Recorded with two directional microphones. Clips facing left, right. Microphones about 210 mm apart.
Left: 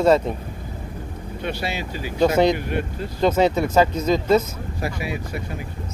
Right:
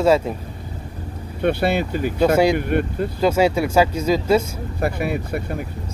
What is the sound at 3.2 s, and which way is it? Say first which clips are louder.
Speech: even; 10° right (ahead or behind).